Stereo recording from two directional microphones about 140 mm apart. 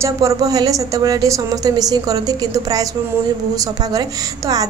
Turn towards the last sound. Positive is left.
turn(degrees=-25)  # may be behind; listen again after turning